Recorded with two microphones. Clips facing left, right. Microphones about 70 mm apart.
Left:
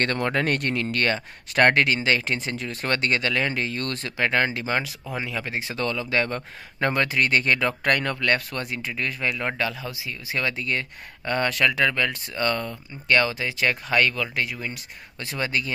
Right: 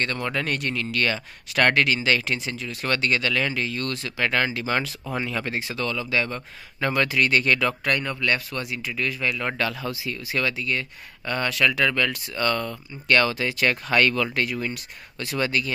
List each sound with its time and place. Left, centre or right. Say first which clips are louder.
0.0 s speech: left 3 dB; left
2.5 s speech: left 2 dB; left
2.8 s speech: right 1 dB; left
4.2 s speech: left 1 dB; left
5.1 s speech: right 2 dB; centre
5.8 s speech: left 2 dB; left
7.8 s speech: left 2 dB; left
9.5 s speech: right 1 dB; centre
10.5 s speech: even; left